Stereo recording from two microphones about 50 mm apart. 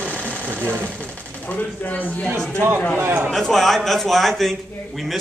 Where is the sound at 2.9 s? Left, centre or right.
Right.